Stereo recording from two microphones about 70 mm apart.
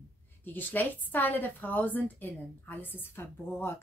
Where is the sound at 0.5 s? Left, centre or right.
Left.